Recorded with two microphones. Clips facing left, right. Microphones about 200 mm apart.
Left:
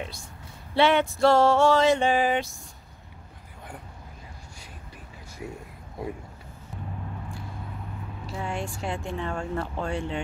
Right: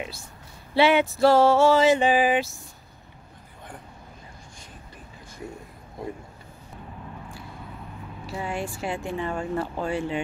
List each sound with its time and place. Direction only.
0.7 s speech: 5° right (ahead or behind)
8.3 s speech: 5° right (ahead or behind)